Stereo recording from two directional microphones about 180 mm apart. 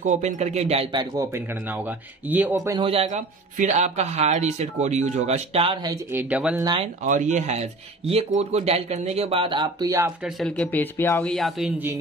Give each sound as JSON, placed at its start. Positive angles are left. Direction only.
{"t": 0.0, "sound": "speech", "side_deg": -40}
{"t": 1.1, "sound": "speech", "side_deg": -15}
{"t": 2.8, "sound": "speech", "side_deg": -30}
{"t": 5.9, "sound": "speech", "side_deg": -10}
{"t": 6.6, "sound": "speech", "side_deg": -25}
{"t": 7.1, "sound": "speech", "side_deg": -45}
{"t": 10.2, "sound": "speech", "side_deg": 5}